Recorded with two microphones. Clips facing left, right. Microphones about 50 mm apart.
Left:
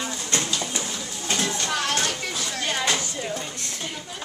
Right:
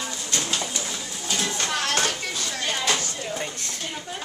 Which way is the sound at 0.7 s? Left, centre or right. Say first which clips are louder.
Left 1 dB; left.